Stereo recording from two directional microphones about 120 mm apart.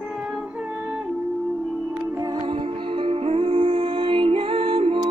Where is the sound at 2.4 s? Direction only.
45° right (ahead or behind).